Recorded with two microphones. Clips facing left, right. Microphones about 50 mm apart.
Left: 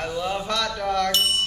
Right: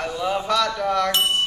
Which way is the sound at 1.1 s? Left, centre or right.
Centre.